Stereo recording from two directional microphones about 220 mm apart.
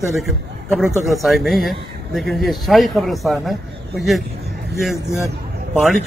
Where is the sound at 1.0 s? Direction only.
Centre (ahead or behind).